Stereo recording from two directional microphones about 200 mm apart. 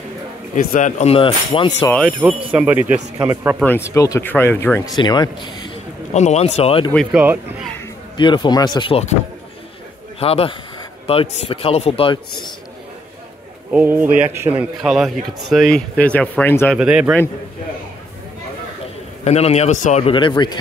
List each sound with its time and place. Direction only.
0.6 s a man's voice: 40° left (ahead or behind)
1.9 s speech: centre (ahead or behind); by 3.5 s 15° right (ahead or behind)
3.6 s a man's voice: 10° left (ahead or behind)
6.1 s a man's voice: 35° left (ahead or behind)
7.1 s speech: 5° right (ahead or behind)
8.2 s a man's voice: 20° left (ahead or behind)
10.1 s a man's voice: 30° left (ahead or behind)
13.7 s a man's voice: 10° right (ahead or behind); by 16.7 s 10° left (ahead or behind)
16.7 s a man's voice: 5° right (ahead or behind)
19.2 s a man's voice: 30° left (ahead or behind)